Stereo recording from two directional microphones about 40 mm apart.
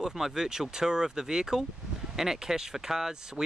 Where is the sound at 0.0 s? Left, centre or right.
Centre.